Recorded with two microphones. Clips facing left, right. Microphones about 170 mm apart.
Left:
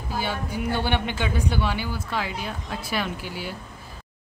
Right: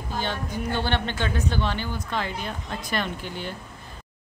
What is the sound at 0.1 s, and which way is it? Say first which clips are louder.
Speech: left 1 dB; 10° left (ahead or behind).